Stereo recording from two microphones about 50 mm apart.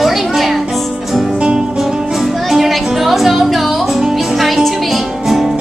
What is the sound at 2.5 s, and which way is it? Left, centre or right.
Music, centre.